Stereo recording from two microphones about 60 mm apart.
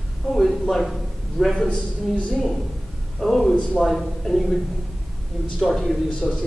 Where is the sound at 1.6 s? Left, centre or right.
Centre.